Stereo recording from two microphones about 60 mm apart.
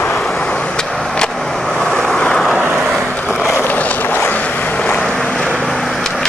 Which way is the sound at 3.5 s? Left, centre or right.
Left.